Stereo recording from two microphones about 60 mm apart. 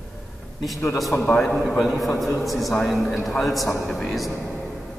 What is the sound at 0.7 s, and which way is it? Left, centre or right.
Speech, centre.